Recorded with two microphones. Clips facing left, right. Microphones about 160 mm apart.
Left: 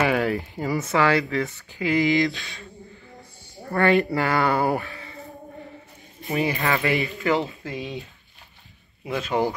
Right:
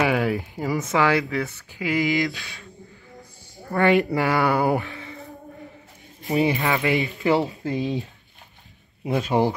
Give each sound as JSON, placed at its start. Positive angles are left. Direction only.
{"t": 0.0, "sound": "speech", "side_deg": -5}
{"t": 0.9, "sound": "speech", "side_deg": -15}
{"t": 4.1, "sound": "speech", "side_deg": -15}
{"t": 6.2, "sound": "speech", "side_deg": -20}
{"t": 7.3, "sound": "speech", "side_deg": -35}
{"t": 9.0, "sound": "speech", "side_deg": -30}